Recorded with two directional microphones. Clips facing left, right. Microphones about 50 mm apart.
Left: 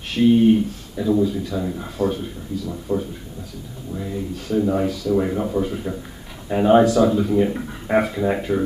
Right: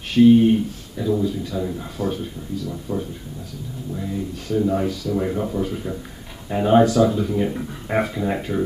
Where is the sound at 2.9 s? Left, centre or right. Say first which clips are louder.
Left 4 dB; left.